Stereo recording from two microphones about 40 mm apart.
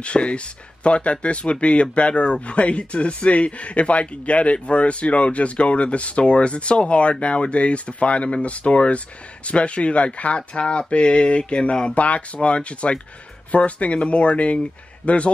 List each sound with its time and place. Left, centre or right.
0.0 s speech: left